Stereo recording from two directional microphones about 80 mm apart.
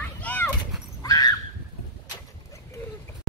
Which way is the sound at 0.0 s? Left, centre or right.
Centre.